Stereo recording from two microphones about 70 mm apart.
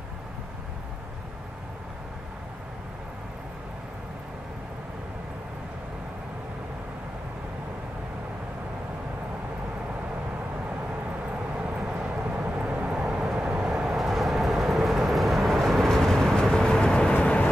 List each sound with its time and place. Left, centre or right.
11.5 s vehicle: centre
13.9 s vehicle: centre